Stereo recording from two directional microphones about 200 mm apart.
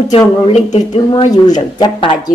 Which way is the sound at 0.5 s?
35° left (ahead or behind).